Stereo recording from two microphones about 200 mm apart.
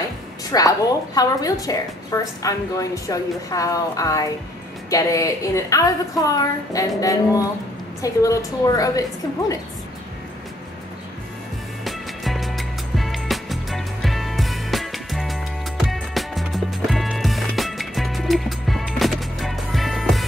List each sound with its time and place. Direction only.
0.5 s a woman's voice: 20° left (ahead or behind)
11.8 s music: centre (ahead or behind)